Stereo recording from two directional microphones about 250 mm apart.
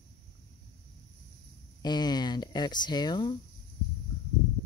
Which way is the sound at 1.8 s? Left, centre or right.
Centre.